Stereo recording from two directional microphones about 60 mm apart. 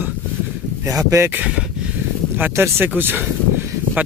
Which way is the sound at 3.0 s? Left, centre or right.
Right.